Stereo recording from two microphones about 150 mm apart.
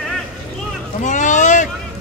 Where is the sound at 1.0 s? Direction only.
55° left (ahead or behind).